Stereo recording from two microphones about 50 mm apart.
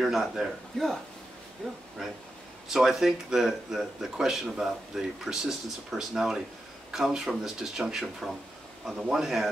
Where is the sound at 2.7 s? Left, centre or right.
Centre.